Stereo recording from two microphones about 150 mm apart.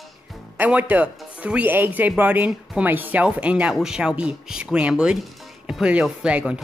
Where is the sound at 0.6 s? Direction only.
10° right (ahead or behind).